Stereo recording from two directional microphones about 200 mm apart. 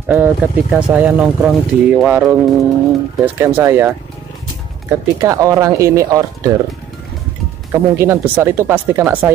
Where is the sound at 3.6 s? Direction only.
10° right (ahead or behind).